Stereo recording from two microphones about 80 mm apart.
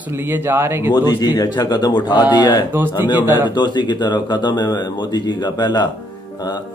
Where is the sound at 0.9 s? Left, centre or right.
Left.